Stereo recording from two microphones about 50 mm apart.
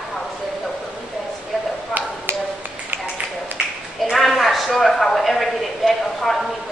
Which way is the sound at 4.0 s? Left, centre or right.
Centre.